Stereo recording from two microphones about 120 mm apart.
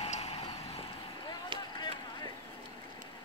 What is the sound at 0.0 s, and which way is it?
Vehicle, 60° left (ahead or behind).